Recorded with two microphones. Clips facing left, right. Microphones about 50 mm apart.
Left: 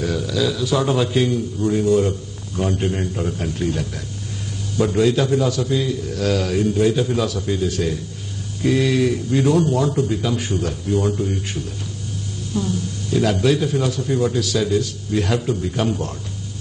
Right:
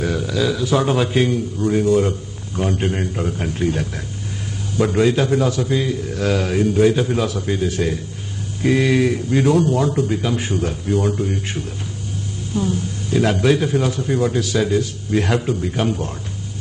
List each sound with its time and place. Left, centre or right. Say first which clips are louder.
0.0 s a man's voice: right 1 dB; right
9.6 s a man's voice: right 1 dB; centre
12.5 s a man's voice: right 2 dB; right